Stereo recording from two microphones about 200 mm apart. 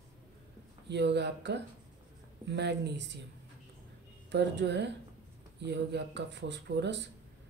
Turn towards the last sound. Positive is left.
turn(degrees=-60)  # may be behind; listen again after turning